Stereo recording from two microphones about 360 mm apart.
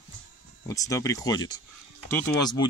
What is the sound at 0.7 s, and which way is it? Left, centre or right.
Speech, centre.